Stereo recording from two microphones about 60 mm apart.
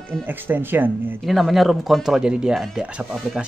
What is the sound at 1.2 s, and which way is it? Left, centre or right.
Speech, centre.